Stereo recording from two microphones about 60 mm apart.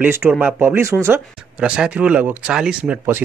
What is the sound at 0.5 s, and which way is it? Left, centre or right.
Speech, right.